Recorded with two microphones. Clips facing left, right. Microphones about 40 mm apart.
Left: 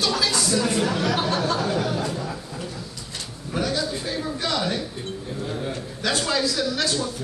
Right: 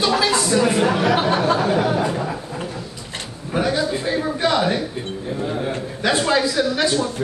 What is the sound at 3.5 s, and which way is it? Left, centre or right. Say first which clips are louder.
A man's voice: right 5 dB; right.